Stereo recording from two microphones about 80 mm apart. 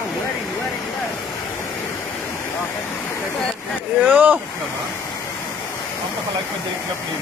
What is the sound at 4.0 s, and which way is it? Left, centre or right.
Speech, centre.